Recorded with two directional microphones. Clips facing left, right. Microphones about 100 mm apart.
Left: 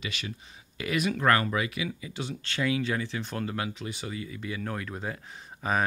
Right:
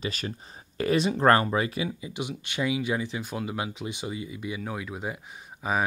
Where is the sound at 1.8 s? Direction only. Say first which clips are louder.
Right 2 dB; 20° right (ahead or behind).